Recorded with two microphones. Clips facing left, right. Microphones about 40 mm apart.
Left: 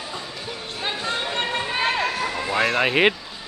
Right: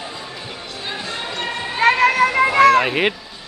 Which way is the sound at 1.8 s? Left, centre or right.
Right.